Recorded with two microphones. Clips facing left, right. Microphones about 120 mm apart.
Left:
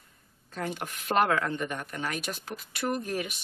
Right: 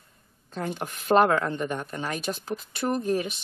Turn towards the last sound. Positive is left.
turn(degrees=-30)  # may be behind; listen again after turning